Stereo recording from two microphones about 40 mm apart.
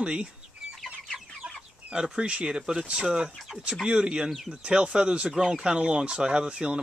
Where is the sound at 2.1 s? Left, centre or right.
Right.